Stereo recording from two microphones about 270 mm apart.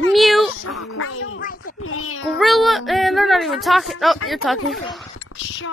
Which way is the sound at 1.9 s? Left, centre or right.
Left.